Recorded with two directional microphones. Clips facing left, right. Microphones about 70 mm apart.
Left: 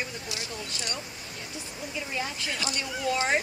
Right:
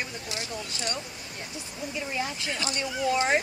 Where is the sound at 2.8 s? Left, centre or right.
Centre.